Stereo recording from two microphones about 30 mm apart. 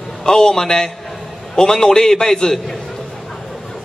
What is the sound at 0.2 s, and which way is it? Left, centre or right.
A man's voice, centre.